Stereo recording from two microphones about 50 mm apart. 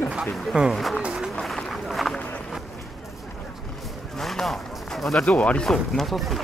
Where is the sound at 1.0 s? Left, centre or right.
Centre.